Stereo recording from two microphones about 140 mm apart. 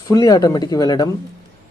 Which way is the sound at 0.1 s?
25° left (ahead or behind).